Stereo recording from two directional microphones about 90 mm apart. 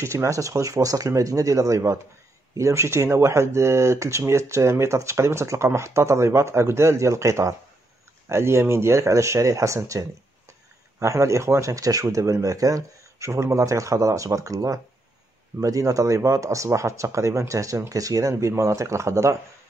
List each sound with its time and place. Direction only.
0.0 s speech: 30° right (ahead or behind)